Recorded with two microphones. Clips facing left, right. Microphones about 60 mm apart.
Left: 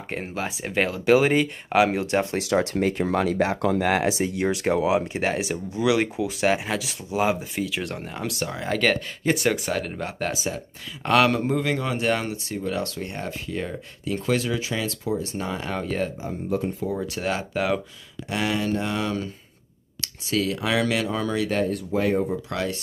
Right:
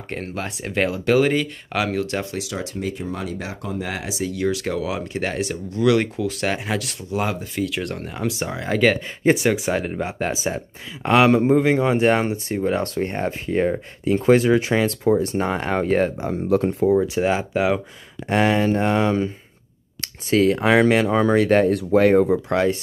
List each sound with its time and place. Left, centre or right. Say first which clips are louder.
0.1 s speech: right 1 dB; centre
1.0 s speech: left 1 dB; centre
2.3 s speech: left 5 dB; left
4.3 s speech: even; left; by 16.1 s right
16.2 s speech: right 7 dB; right
16.9 s speech: right 8 dB; centre
18.3 s speech: right 7 dB; right
21.9 s speech: right 8 dB; right
22.5 s speech: right 8 dB; right